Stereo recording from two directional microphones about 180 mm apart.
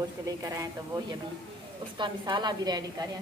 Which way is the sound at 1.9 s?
25° right (ahead or behind).